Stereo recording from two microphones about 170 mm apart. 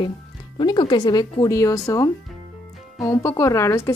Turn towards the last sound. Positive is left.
turn(degrees=15)  # may be behind; listen again after turning